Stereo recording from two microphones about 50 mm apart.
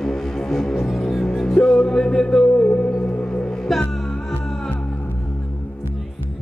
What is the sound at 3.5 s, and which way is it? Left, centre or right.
Music, centre.